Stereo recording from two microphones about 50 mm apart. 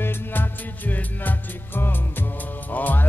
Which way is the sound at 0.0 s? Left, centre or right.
Left.